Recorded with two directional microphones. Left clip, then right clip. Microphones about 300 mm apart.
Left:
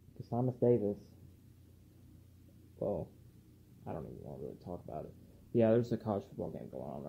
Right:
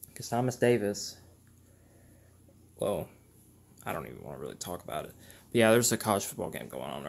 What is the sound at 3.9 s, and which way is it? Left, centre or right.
Speech, right.